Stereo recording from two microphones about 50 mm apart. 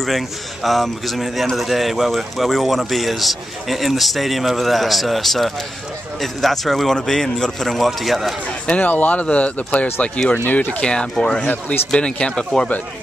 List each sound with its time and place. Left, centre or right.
0.0 s a man's voice: centre
8.6 s speech: left
10.8 s speech: centre